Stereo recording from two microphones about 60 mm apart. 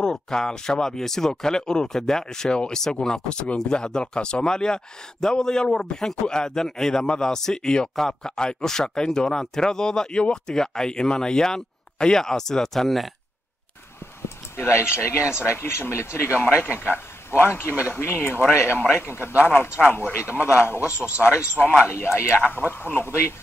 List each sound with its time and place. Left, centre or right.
0.0 s speech: centre
14.6 s a man's voice: left
21.2 s speech: left
21.8 s a man's voice: left
22.4 s speech: left
22.7 s a man's voice: left